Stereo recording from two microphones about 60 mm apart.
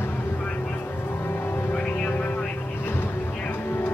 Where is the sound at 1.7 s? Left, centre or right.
Left.